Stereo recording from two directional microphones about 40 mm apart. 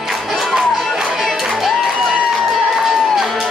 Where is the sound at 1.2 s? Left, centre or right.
Centre.